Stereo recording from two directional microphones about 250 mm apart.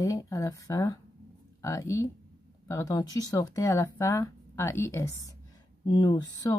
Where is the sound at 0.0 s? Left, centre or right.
Centre.